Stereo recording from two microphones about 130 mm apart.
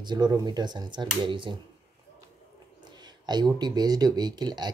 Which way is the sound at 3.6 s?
30° right (ahead or behind).